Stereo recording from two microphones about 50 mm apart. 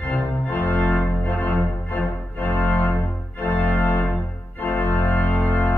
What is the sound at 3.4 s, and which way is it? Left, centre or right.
Organ, left.